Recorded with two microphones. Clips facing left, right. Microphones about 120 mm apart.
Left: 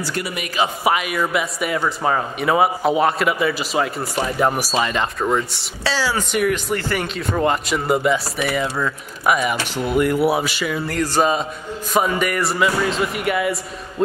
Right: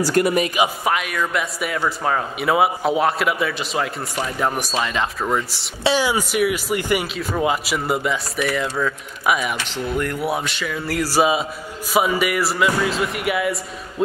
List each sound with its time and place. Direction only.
0.0 s a man's voice: 45° right (ahead or behind)
0.8 s a man's voice: 5° left (ahead or behind)
5.9 s speech: 20° right (ahead or behind)
6.3 s a man's voice: 5° right (ahead or behind)
9.8 s a man's voice: 10° left (ahead or behind)
11.0 s a man's voice: 10° right (ahead or behind)